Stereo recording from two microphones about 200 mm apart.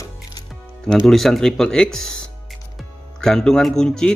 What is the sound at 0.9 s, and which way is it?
Speech, centre (ahead or behind).